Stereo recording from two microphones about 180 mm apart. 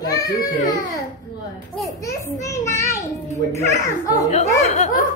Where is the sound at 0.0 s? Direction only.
20° left (ahead or behind).